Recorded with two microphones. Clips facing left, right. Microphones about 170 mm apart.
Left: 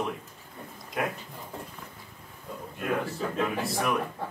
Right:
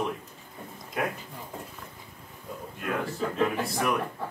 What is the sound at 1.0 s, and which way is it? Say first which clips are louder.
Speech: even; centre (ahead or behind).